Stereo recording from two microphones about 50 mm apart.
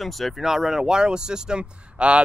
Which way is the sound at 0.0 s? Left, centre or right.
Centre.